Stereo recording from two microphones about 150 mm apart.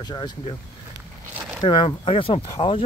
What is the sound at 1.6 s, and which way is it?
Speech, 35° left (ahead or behind).